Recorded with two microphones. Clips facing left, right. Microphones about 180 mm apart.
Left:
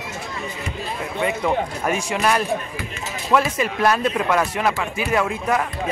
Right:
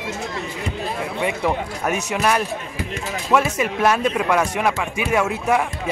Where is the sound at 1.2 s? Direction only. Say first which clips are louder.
Left 2 dB; 5° right (ahead or behind).